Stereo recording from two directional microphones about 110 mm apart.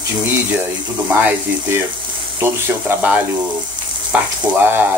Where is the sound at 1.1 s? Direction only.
15° right (ahead or behind).